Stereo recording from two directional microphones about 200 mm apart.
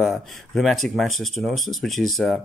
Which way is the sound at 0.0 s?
Centre (ahead or behind).